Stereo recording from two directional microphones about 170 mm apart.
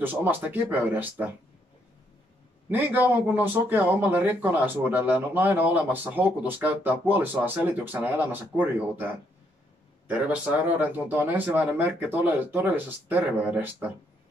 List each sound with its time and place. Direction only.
0.0 s speech: 10° right (ahead or behind)
2.7 s speech: 10° right (ahead or behind)